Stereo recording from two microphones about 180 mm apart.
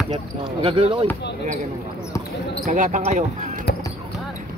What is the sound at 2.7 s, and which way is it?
Speech, 40° right (ahead or behind).